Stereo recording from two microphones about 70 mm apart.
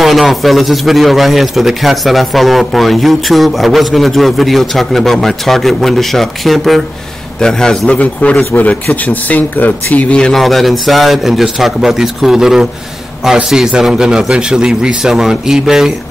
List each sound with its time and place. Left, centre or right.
0.0 s a man's voice: centre
8.0 s speech: centre
10.2 s a man's voice: centre